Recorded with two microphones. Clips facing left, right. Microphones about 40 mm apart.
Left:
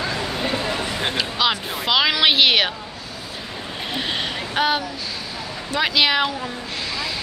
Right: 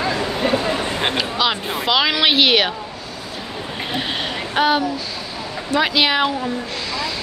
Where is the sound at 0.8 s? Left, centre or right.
Right.